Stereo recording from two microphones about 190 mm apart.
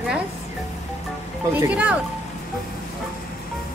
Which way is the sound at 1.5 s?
10° right (ahead or behind).